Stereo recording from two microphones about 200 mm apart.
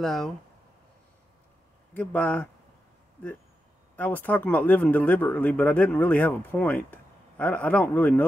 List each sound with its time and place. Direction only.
0.0 s speech: centre (ahead or behind)
2.0 s speech: 10° left (ahead or behind)
3.9 s speech: 10° left (ahead or behind)